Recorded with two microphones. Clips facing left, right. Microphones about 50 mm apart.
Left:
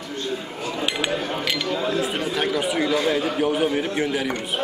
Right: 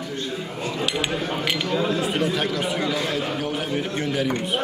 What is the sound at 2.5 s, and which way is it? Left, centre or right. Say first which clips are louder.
A man's voice: left 3 dB; centre.